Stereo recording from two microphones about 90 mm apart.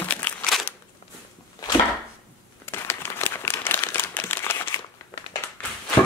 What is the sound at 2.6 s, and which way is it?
Crumpling, 25° left (ahead or behind).